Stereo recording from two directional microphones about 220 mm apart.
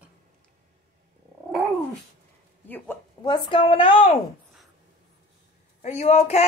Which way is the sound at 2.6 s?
10° left (ahead or behind).